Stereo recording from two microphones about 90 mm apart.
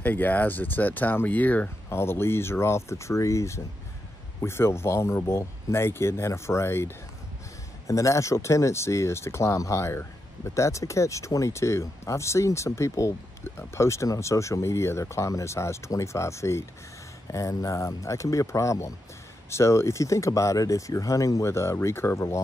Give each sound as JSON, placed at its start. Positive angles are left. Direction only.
{"t": 0.0, "sound": "speech", "side_deg": 20}